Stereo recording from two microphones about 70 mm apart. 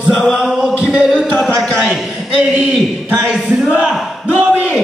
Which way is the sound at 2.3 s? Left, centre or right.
Right.